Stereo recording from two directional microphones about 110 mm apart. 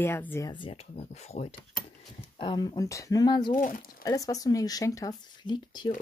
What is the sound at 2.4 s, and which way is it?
Speech, 40° left (ahead or behind).